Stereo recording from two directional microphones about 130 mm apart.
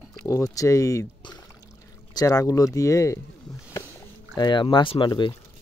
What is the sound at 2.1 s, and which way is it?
Speech, 25° left (ahead or behind).